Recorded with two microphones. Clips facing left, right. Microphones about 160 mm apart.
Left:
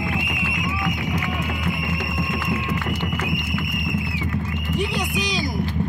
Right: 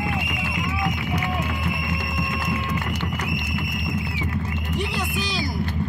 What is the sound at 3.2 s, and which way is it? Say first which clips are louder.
Horse: left 2 dB; 40° right (ahead or behind).